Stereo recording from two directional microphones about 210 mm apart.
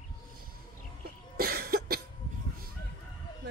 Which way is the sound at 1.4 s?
45° right (ahead or behind).